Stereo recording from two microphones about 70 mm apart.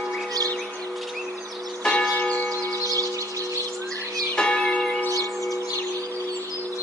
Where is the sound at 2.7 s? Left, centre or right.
Right.